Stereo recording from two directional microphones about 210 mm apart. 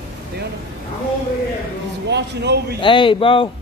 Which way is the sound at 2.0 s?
55° right (ahead or behind).